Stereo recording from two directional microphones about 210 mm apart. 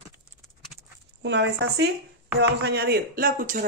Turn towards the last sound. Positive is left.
turn(degrees=-40)  # may be behind; listen again after turning